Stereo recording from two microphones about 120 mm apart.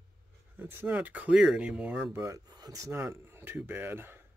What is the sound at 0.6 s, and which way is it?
Speech, 15° right (ahead or behind).